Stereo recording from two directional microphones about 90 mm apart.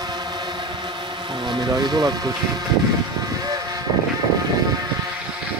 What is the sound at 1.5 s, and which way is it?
Vehicle, 55° right (ahead or behind).